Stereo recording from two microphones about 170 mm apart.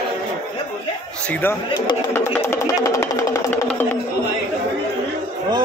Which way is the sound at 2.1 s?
15° left (ahead or behind).